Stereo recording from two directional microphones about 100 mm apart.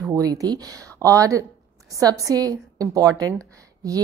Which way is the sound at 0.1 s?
35° right (ahead or behind).